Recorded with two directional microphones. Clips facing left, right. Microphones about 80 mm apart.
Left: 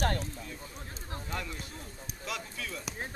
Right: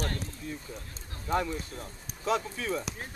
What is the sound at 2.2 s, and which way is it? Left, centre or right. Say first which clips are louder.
Speech: right 10 dB; right.